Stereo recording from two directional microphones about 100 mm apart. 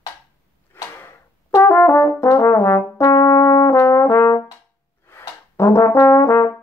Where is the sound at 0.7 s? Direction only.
20° left (ahead or behind).